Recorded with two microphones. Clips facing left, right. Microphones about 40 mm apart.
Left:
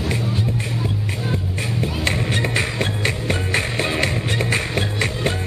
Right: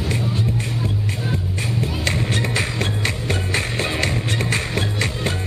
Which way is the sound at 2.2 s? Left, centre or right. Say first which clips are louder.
Left 1 dB; left.